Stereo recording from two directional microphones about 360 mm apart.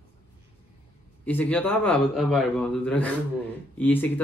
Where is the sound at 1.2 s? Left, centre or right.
Centre.